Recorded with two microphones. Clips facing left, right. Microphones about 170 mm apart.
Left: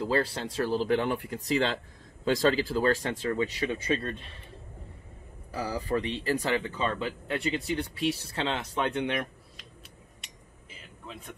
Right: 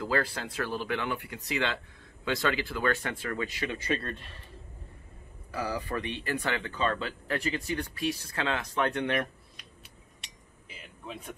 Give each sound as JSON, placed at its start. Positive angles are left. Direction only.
{"t": 0.0, "sound": "speech", "side_deg": 30}
{"t": 3.9, "sound": "a man's voice", "side_deg": 15}
{"t": 5.5, "sound": "speech", "side_deg": 30}